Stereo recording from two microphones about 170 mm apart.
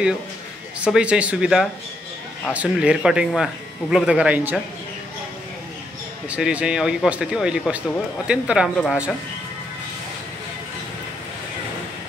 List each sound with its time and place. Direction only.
0.7 s speech: 5° right (ahead or behind)
6.3 s speech: 5° right (ahead or behind)